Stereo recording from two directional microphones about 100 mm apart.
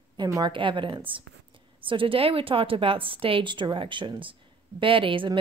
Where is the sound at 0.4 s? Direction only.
55° right (ahead or behind).